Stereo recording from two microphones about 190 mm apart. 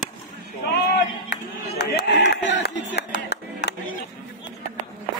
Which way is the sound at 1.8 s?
65° left (ahead or behind).